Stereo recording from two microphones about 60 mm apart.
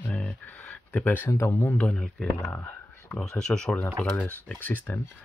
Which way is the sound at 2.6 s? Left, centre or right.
Left.